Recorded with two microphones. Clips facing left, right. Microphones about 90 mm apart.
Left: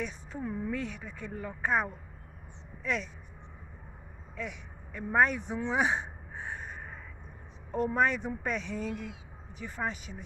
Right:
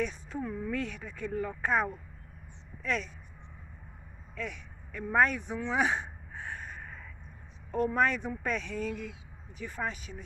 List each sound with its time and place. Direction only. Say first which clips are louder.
0.0 s speech: right 3 dB; 15° left (ahead or behind)
4.4 s a sound: right 1 dB; 20° left (ahead or behind)
7.7 s speech: even; 20° left (ahead or behind)